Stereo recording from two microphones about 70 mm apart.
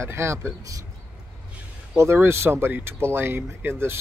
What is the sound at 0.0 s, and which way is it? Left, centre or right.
Speech, right.